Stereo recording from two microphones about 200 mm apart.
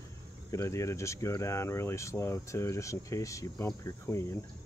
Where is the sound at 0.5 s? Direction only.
15° left (ahead or behind).